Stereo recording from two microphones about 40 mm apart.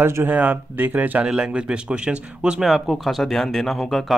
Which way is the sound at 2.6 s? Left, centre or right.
Centre.